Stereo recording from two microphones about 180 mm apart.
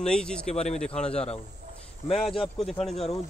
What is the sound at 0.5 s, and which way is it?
A man's voice, 40° left (ahead or behind).